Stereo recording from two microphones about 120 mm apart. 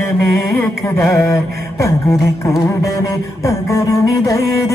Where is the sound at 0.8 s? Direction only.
20° left (ahead or behind).